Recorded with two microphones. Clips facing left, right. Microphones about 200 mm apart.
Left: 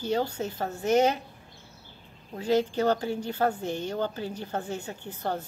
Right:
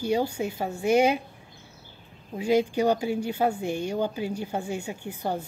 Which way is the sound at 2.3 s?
10° right (ahead or behind).